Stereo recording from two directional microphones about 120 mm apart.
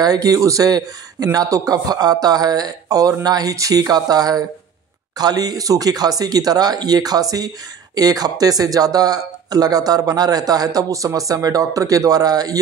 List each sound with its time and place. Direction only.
0.0 s speech: 30° right (ahead or behind)